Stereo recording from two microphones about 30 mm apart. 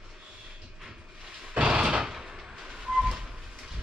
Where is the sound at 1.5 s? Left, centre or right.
Right.